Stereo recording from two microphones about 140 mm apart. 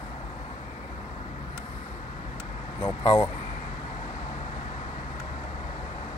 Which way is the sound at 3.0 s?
35° left (ahead or behind).